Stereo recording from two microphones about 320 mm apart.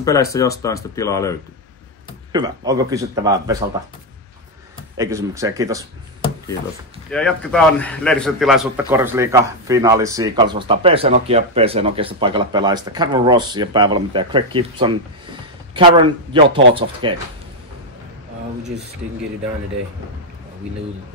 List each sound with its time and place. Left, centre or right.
0.0 s speech: centre
2.3 s a man's voice: centre
4.9 s a man's voice: centre
7.1 s a man's voice: centre